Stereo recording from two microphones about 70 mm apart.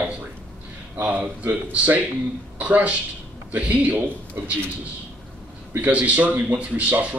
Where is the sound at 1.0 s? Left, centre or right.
Right.